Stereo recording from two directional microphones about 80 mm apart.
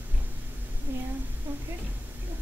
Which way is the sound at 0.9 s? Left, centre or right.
Right.